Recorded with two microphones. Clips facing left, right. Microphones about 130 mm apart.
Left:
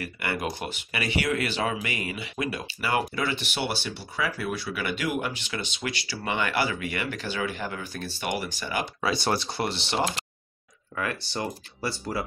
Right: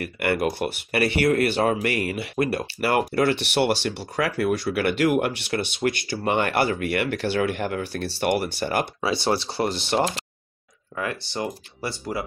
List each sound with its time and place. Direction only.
0.0 s speech: 60° right (ahead or behind)
9.0 s speech: 25° right (ahead or behind); by 10.0 s 45° right (ahead or behind)
11.0 s speech: 20° right (ahead or behind)